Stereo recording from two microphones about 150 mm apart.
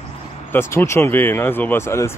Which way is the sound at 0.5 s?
15° left (ahead or behind).